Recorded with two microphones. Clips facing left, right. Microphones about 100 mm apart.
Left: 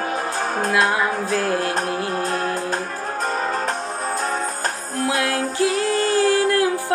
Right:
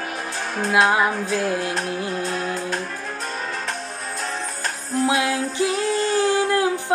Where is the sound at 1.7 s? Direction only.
35° left (ahead or behind).